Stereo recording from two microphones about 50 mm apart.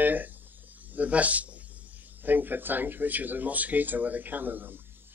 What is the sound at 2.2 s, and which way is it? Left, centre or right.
Speech, right.